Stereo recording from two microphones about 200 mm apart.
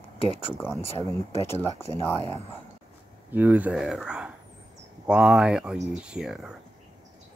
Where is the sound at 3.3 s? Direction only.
10° right (ahead or behind).